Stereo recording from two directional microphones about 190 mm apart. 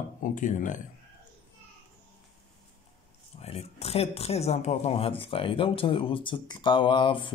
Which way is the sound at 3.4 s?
30° left (ahead or behind).